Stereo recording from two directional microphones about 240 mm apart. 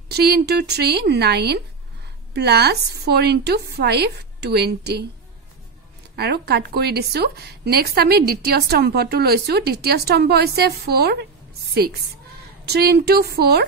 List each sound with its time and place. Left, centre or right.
0.1 s a woman's voice: right
6.1 s a woman's voice: right